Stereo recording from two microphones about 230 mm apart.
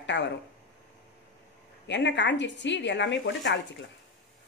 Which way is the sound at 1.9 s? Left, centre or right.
Left.